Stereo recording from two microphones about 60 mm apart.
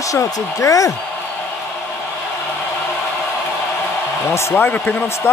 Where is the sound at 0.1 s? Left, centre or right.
Left.